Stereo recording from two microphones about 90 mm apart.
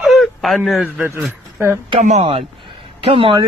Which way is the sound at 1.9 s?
90° right.